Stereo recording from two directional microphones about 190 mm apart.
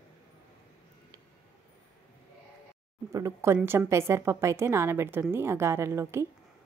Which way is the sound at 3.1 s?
15° right (ahead or behind).